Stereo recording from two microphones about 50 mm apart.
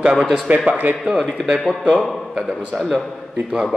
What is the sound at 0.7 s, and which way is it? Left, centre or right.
Speech, right.